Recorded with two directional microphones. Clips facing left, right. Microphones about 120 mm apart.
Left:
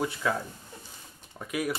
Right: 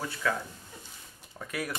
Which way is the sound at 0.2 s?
20° left (ahead or behind).